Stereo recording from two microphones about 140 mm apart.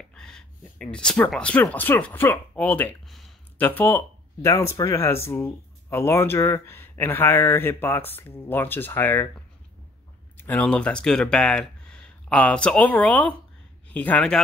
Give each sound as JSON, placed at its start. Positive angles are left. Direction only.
{"t": 0.1, "sound": "speech", "side_deg": 5}
{"t": 3.1, "sound": "a sound", "side_deg": 0}
{"t": 3.5, "sound": "speech", "side_deg": 10}
{"t": 10.3, "sound": "speech", "side_deg": 15}